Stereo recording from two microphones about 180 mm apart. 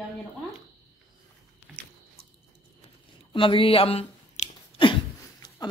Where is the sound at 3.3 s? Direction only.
30° left (ahead or behind).